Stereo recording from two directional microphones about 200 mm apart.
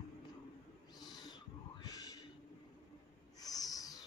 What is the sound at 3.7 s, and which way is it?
Music, 20° left (ahead or behind).